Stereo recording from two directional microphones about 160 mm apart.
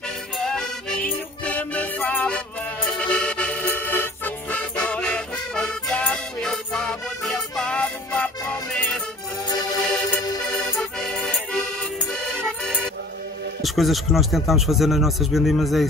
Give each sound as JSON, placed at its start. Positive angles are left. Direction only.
{"t": 0.4, "sound": "music", "side_deg": 5}
{"t": 9.5, "sound": "music", "side_deg": 25}
{"t": 10.5, "sound": "music", "side_deg": 5}
{"t": 13.6, "sound": "a man's voice", "side_deg": 0}